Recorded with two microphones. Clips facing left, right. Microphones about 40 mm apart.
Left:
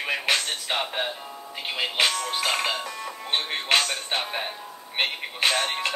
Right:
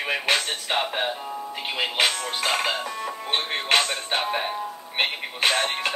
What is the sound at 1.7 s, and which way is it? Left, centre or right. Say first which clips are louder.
Speech: right 1 dB; centre.